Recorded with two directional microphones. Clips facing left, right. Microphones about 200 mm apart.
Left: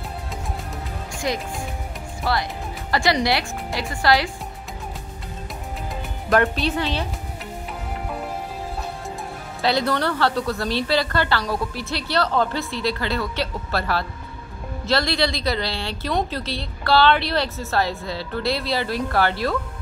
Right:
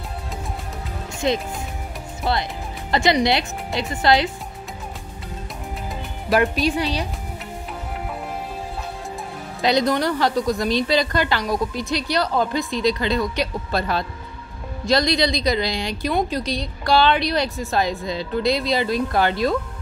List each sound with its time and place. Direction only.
1.2 s a woman's voice: 25° right (ahead or behind)
6.2 s a woman's voice: 10° right (ahead or behind)
9.6 s a woman's voice: 15° right (ahead or behind)